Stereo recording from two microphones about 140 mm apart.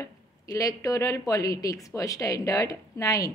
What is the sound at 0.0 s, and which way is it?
Speech, 25° left (ahead or behind).